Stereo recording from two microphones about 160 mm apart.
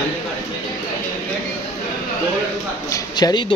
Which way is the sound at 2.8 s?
20° left (ahead or behind).